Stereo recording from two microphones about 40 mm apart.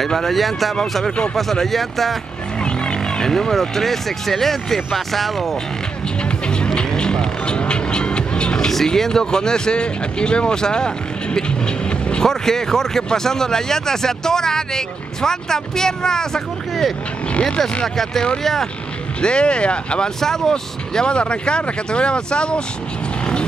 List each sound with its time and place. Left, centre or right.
0.0 s speech: centre
2.6 s speech: left; by 5.6 s centre
6.4 s music: left
8.6 s speech: centre
17.3 s speech: left
17.8 s speech: centre
19.2 s speech: left
20.2 s speech: centre